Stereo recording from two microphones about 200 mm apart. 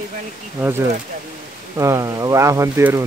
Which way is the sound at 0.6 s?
10° right (ahead or behind).